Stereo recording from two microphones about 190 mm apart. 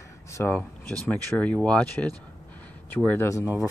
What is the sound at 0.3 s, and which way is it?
Speech, 10° left (ahead or behind).